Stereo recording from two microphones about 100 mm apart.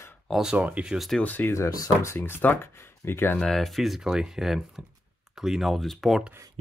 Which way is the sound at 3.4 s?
5° left (ahead or behind).